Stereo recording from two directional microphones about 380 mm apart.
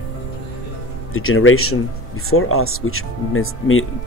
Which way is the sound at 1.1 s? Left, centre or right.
Left.